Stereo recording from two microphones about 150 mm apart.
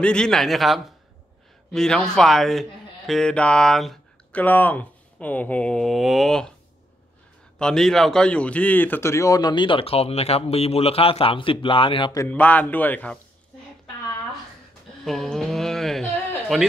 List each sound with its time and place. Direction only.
0.0 s speech: 5° left (ahead or behind)
7.5 s speech: 5° left (ahead or behind); by 12.1 s 35° left (ahead or behind)
12.3 s a man's voice: 10° left (ahead or behind)
15.0 s a sound: centre (ahead or behind)